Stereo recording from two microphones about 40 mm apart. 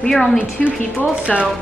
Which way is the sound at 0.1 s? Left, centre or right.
Centre.